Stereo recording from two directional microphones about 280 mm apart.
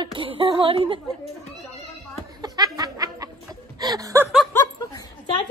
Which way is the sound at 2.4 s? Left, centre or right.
Centre.